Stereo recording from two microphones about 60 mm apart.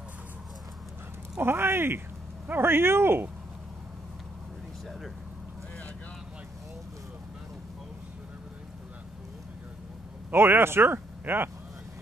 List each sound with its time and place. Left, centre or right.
1.4 s speech: right
10.3 s speech: right